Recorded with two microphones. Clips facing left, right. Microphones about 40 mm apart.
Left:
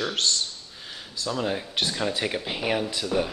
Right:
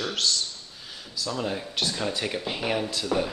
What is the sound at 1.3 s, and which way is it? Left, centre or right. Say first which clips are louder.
Speech: left 3 dB; centre.